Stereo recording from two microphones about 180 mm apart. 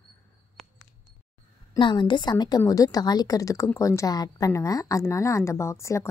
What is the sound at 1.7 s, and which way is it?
A woman's voice, 25° left (ahead or behind).